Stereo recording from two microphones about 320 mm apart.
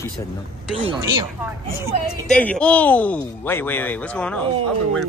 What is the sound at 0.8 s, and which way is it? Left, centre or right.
Speech, centre.